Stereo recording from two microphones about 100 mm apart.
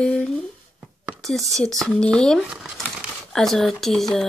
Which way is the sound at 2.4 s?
5° right (ahead or behind).